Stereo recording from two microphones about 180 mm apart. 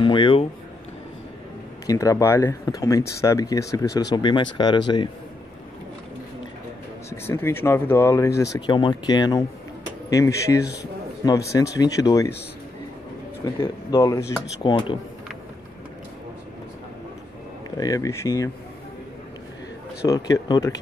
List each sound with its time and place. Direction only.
0.0 s a sound: 25° left (ahead or behind)
1.9 s speech: 20° left (ahead or behind)
7.1 s speech: 15° left (ahead or behind)
13.6 s speech: 20° left (ahead or behind)
17.7 s speech: 20° left (ahead or behind)
20.1 s speech: 20° left (ahead or behind)